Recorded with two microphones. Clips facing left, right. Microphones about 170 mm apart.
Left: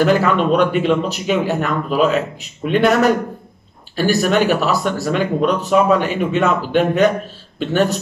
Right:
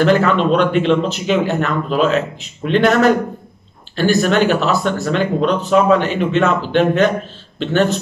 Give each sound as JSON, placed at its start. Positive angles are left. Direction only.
{"t": 0.0, "sound": "speech", "side_deg": 10}